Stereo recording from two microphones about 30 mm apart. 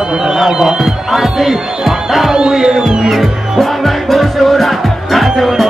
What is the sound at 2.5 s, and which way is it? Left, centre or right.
Music, centre.